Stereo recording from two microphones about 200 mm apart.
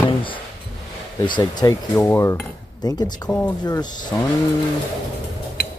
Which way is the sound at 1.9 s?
10° left (ahead or behind).